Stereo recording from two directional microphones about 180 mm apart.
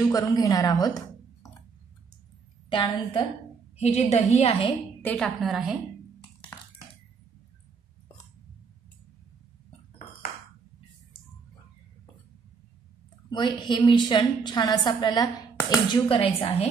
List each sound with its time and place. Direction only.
0.1 s a woman's voice: 20° left (ahead or behind)
2.7 s a woman's voice: 30° left (ahead or behind)
5.0 s a woman's voice: 5° left (ahead or behind)
13.3 s a woman's voice: 25° left (ahead or behind)